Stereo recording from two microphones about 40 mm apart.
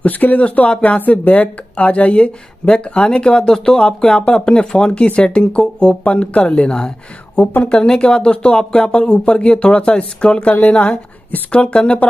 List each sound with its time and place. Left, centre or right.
0.0 s speech: left
7.4 s speech: left
7.7 s speech: left
10.5 s speech: left
11.5 s speech: left